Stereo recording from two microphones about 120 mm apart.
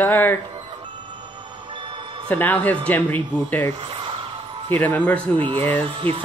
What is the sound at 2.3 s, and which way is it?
Speech, 15° left (ahead or behind).